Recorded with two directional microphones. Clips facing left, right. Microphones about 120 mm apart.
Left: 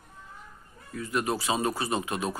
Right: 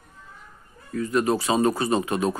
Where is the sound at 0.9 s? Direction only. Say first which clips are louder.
Right 7 dB; 10° left (ahead or behind).